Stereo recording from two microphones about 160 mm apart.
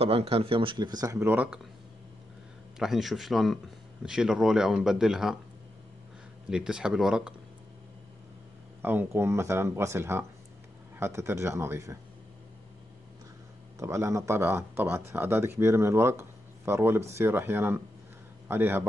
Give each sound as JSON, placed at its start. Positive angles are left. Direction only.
{"t": 0.0, "sound": "speech", "side_deg": -35}
{"t": 2.8, "sound": "speech", "side_deg": 0}
{"t": 6.5, "sound": "speech", "side_deg": -5}
{"t": 8.8, "sound": "speech", "side_deg": -15}
{"t": 13.7, "sound": "speech", "side_deg": -20}